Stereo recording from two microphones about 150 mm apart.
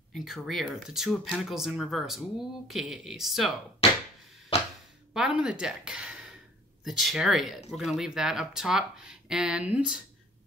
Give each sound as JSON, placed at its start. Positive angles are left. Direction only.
{"t": 0.1, "sound": "speech", "side_deg": 0}
{"t": 3.8, "sound": "a sound", "side_deg": 40}
{"t": 5.1, "sound": "speech", "side_deg": -5}